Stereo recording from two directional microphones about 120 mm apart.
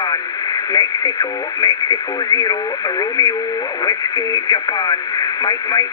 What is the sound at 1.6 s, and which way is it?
Speech, 30° left (ahead or behind).